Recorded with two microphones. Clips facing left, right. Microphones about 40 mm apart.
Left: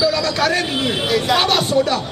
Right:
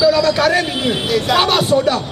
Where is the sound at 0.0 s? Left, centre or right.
Centre.